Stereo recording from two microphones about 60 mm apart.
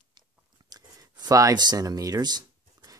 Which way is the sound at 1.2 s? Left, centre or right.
Right.